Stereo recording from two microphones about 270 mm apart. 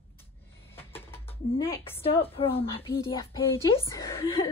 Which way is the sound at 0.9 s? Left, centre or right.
Centre.